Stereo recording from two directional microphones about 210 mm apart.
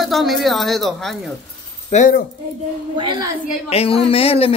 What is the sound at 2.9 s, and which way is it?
Speech, 20° right (ahead or behind).